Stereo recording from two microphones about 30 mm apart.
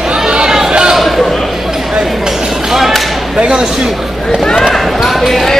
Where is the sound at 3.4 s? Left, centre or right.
Right.